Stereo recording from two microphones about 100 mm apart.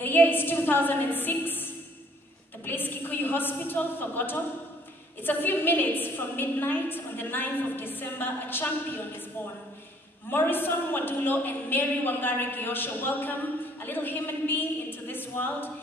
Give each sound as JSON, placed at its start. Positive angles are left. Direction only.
{"t": 0.0, "sound": "a woman's voice", "side_deg": 20}
{"t": 10.3, "sound": "a woman's voice", "side_deg": 20}